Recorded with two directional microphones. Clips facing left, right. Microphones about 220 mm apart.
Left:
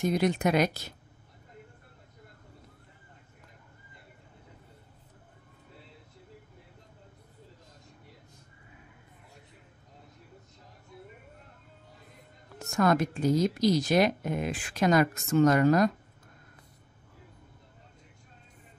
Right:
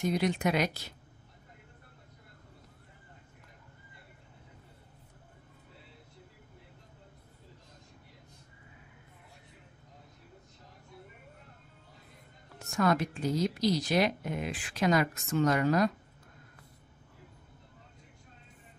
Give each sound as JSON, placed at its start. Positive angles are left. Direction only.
{"t": 0.0, "sound": "speech", "side_deg": 45}
{"t": 12.6, "sound": "speech", "side_deg": 45}